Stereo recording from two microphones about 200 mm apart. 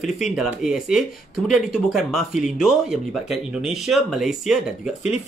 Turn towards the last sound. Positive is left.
turn(degrees=0)  # may be behind; listen again after turning